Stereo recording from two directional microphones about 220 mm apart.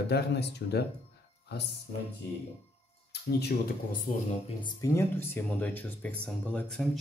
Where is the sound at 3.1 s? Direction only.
45° left (ahead or behind).